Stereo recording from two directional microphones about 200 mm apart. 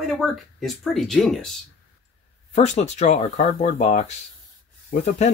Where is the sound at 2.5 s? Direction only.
35° left (ahead or behind).